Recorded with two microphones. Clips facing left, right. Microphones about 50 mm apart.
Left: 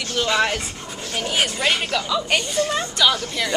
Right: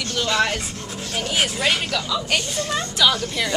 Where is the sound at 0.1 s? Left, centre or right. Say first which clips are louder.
Left 1 dB; centre.